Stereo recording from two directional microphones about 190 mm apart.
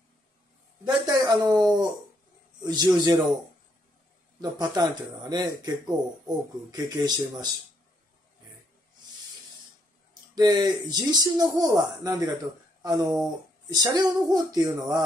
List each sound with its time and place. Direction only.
1.0 s a sound: 20° right (ahead or behind)
2.6 s speech: 20° right (ahead or behind)
4.4 s speech: 20° right (ahead or behind)
10.3 s speech: 20° right (ahead or behind)